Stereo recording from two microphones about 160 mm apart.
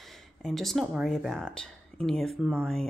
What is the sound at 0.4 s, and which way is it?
A woman's voice, centre (ahead or behind).